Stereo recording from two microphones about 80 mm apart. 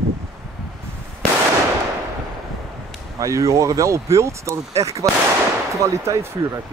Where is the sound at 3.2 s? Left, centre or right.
Right.